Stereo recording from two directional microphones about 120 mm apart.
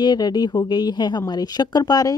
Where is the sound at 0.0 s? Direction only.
35° left (ahead or behind).